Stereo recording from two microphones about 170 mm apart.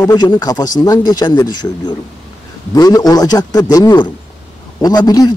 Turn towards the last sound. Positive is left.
turn(degrees=25)  # may be behind; listen again after turning